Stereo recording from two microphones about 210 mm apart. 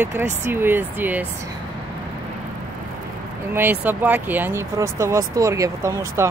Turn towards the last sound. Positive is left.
turn(degrees=-15)  # may be behind; listen again after turning